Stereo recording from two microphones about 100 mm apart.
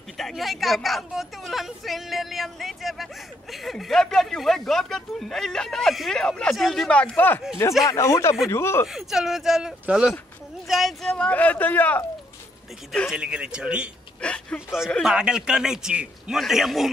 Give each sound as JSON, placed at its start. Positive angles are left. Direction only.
{"t": 0.2, "sound": "speech", "side_deg": 0}
{"t": 7.8, "sound": "speech", "side_deg": 30}
{"t": 8.8, "sound": "speech", "side_deg": -5}
{"t": 13.1, "sound": "a man's voice", "side_deg": -10}
{"t": 14.2, "sound": "speech", "side_deg": 10}
{"t": 15.1, "sound": "a man's voice", "side_deg": -10}